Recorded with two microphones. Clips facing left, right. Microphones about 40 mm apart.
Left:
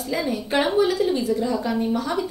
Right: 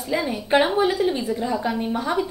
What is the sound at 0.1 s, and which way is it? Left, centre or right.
A woman's voice, centre.